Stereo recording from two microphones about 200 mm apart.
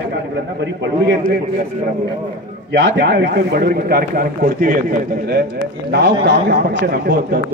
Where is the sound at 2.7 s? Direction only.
60° right (ahead or behind).